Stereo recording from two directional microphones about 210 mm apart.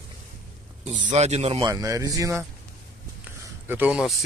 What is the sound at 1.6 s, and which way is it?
Speech, 15° right (ahead or behind).